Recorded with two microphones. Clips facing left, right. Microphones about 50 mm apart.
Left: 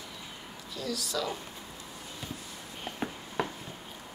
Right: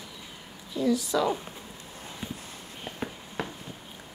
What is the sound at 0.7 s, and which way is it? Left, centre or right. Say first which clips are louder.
Speech: right 9 dB; right.